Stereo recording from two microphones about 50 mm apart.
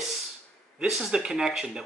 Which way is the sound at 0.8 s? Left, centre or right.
Centre.